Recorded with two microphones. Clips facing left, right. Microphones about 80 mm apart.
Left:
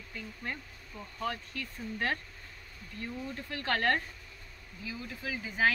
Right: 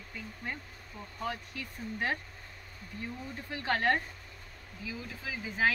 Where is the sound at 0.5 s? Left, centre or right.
Centre.